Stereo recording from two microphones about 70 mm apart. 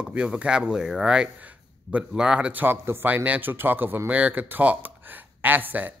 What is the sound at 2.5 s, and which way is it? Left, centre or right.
A man's voice, right.